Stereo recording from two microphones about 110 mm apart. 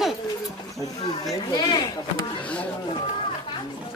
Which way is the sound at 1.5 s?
40° left (ahead or behind).